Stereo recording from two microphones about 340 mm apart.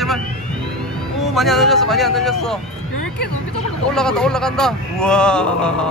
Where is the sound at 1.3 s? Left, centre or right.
Centre.